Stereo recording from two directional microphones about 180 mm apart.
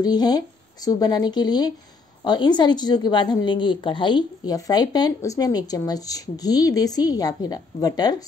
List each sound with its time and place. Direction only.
0.0 s a woman's voice: 20° left (ahead or behind)